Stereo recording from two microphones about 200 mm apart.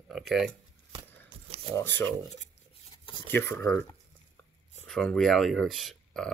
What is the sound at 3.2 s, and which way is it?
Speech, 10° left (ahead or behind).